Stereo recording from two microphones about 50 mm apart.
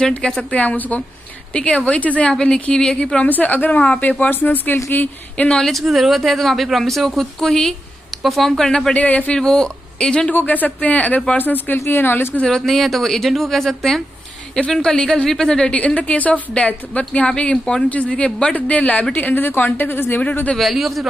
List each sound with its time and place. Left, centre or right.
0.4 s a woman's voice: left
2.3 s a woman's voice: centre
3.3 s speech: left
5.7 s speech: centre
8.9 s speech: left
9.3 s speech: centre
10.3 s speech: left
12.6 s a woman's voice: centre; by 20.2 s left
20.5 s speech: centre